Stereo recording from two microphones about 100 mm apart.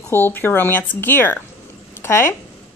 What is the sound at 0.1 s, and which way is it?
Speech, 20° left (ahead or behind).